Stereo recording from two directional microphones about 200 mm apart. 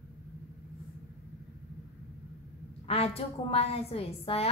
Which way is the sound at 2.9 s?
30° left (ahead or behind).